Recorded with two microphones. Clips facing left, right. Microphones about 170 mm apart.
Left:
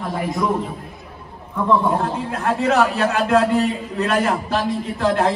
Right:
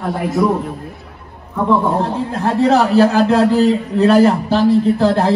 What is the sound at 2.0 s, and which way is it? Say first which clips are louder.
A man's voice: right 4 dB; 35° right (ahead or behind).